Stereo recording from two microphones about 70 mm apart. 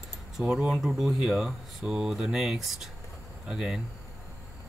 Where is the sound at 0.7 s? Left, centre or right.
Centre.